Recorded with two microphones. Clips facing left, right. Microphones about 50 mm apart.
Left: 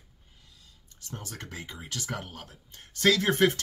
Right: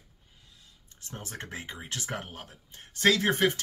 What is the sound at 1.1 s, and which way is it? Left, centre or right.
Speech, right.